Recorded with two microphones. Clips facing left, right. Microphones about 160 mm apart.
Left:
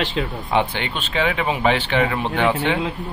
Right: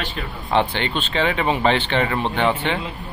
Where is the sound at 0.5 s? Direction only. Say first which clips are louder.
Right 2 dB; 10° left (ahead or behind).